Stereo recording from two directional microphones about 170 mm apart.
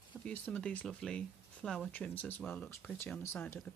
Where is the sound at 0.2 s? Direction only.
5° left (ahead or behind).